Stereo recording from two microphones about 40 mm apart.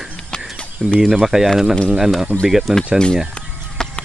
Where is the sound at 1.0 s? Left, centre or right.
Centre.